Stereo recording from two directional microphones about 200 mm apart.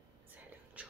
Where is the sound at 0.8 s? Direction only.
5° right (ahead or behind).